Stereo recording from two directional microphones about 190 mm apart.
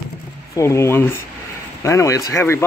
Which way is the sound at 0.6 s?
15° left (ahead or behind).